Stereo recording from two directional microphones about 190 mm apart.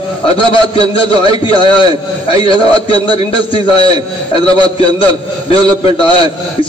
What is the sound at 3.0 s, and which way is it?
Speech, 30° left (ahead or behind).